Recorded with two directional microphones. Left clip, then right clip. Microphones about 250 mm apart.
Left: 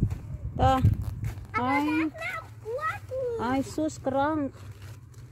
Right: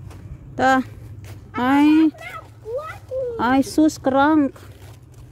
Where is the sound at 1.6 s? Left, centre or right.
Right.